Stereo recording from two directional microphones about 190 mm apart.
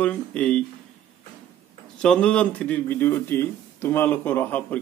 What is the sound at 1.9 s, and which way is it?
Speech, 5° left (ahead or behind).